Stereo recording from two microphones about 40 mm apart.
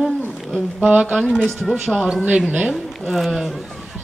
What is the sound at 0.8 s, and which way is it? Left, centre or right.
Speech, right.